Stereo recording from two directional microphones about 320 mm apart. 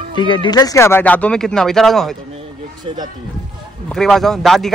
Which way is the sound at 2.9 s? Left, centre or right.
Centre.